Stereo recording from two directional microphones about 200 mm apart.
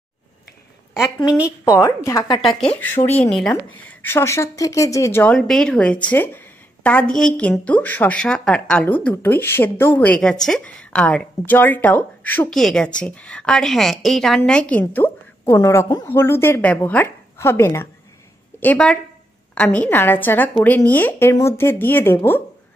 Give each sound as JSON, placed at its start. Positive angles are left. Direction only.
{"t": 1.6, "sound": "speech", "side_deg": 15}
{"t": 2.4, "sound": "speech", "side_deg": 5}